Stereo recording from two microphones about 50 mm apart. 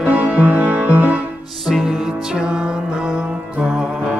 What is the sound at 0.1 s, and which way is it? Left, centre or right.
Music, right.